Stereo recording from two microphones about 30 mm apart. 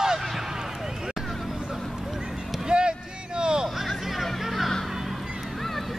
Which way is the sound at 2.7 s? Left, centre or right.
Right.